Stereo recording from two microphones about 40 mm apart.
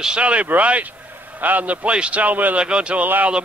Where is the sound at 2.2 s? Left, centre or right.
Right.